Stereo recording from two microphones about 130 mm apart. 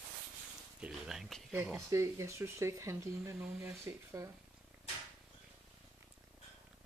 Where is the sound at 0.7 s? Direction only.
5° right (ahead or behind).